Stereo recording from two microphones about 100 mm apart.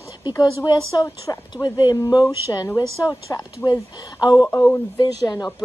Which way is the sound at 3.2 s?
40° left (ahead or behind).